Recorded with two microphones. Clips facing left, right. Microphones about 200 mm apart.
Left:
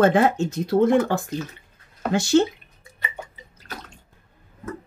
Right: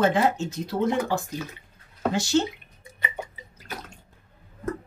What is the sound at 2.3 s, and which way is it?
Speech, 60° left (ahead or behind).